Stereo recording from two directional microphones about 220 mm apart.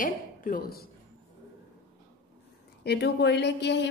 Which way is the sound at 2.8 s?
50° left (ahead or behind).